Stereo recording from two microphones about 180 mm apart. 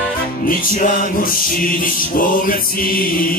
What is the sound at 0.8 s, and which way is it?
Music, 50° left (ahead or behind).